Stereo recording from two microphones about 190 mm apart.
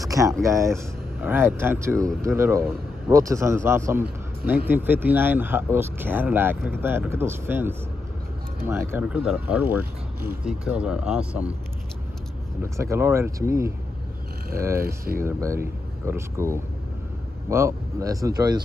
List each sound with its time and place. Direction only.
0.0 s a sound: 15° right (ahead or behind)
0.4 s a man's voice: 15° right (ahead or behind)
12.7 s a man's voice: 15° right (ahead or behind)